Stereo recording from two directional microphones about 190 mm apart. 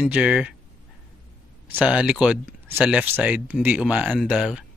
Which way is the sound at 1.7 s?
5° right (ahead or behind).